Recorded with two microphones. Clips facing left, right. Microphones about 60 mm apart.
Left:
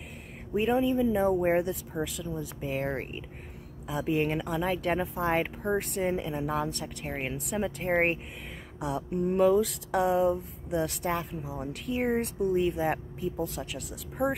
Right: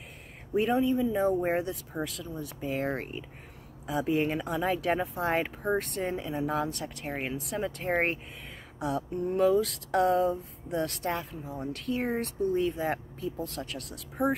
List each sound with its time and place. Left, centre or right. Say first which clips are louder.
0.6 s speech: even; centre
8.7 s a sound: right 1 dB; centre
9.1 s speech: left 2 dB; left
9.5 s speech: left 1 dB; centre